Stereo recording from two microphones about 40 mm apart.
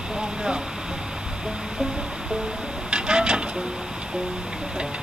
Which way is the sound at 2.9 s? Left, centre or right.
Right.